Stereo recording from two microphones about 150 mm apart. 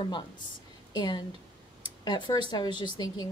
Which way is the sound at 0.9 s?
30° left (ahead or behind).